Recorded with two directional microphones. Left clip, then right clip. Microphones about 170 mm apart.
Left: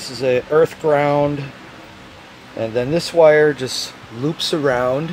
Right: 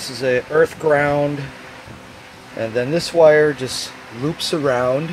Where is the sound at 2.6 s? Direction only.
5° right (ahead or behind).